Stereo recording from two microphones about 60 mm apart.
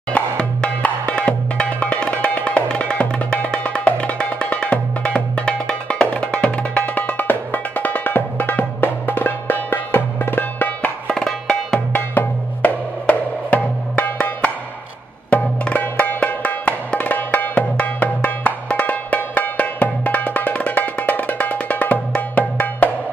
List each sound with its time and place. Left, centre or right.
0.1 s music: centre
11.1 s music: centre
11.9 s music: left